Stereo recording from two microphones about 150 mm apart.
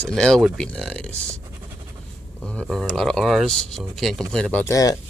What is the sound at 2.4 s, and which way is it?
Speech, centre (ahead or behind).